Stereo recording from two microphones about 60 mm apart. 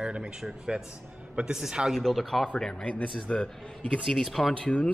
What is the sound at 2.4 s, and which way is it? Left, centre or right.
Speech, centre.